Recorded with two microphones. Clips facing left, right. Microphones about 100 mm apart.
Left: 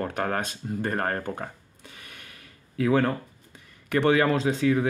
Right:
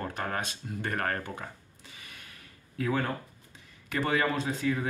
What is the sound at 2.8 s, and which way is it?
Speech, 90° left.